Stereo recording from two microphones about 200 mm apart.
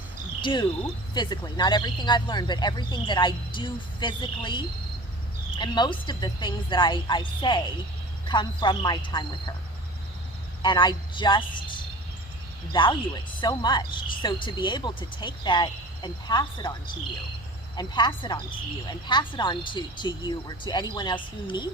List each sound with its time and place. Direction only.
0.4 s speech: 25° left (ahead or behind)
10.6 s speech: 20° left (ahead or behind)
13.4 s speech: 20° left (ahead or behind)
17.7 s speech: 20° left (ahead or behind)